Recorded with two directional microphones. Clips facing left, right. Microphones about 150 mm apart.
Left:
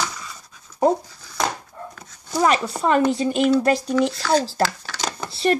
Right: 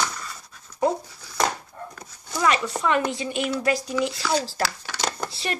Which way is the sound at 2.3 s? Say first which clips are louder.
Left 4 dB; 40° left (ahead or behind).